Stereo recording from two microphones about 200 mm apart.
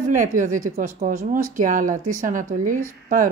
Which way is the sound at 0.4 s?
40° right (ahead or behind).